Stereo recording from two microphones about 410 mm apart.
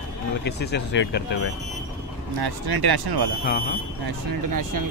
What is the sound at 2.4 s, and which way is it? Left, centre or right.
Speech, right.